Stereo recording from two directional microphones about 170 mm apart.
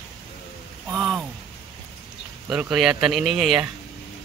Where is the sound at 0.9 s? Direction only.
Centre (ahead or behind).